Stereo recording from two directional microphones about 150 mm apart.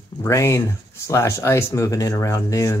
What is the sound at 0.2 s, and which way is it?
Speech, 20° left (ahead or behind).